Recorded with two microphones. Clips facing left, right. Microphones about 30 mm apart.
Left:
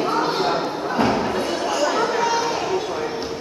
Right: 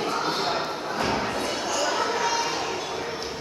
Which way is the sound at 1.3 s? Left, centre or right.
Centre.